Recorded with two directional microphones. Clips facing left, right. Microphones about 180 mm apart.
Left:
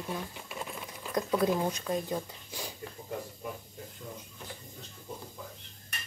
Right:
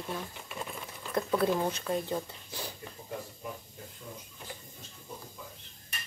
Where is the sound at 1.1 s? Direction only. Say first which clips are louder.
Even; 15° left (ahead or behind).